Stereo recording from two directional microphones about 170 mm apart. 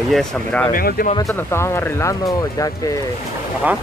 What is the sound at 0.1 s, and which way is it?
Speech, 5° left (ahead or behind).